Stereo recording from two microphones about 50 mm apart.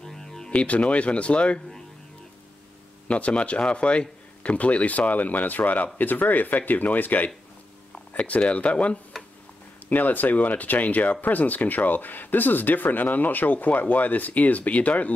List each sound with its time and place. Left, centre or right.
0.0 s music: centre
0.5 s speech: left
3.1 s speech: left
9.8 s speech: left